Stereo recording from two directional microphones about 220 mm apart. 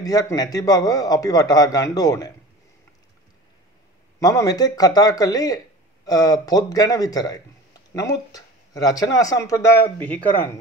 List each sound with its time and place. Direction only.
0.0 s speech: 15° left (ahead or behind)
4.2 s speech: 15° left (ahead or behind)